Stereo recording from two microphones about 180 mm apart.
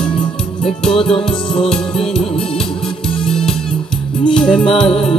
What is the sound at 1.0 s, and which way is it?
Music, 30° left (ahead or behind).